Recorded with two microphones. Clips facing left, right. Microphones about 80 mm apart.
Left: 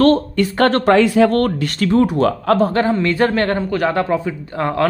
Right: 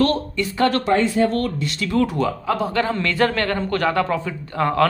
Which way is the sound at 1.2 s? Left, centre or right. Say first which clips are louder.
Left 6 dB; left.